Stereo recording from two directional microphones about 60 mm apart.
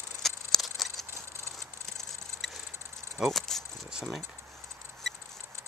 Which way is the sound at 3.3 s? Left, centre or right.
Centre.